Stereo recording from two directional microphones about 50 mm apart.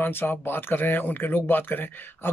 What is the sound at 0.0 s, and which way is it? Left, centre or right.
Speech, left.